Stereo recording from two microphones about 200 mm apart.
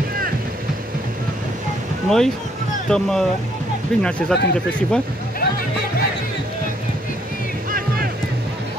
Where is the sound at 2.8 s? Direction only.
5° left (ahead or behind).